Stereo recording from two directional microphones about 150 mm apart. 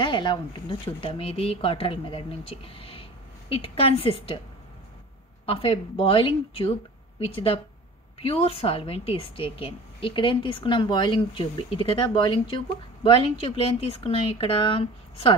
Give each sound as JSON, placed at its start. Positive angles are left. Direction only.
{"t": 0.0, "sound": "a woman's voice", "side_deg": 30}
{"t": 5.5, "sound": "a woman's voice", "side_deg": 35}